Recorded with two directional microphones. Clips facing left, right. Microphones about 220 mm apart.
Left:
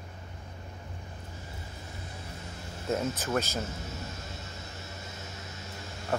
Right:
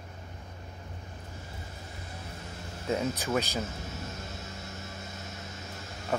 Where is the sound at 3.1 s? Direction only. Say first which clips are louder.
Right 1 dB; 15° right (ahead or behind).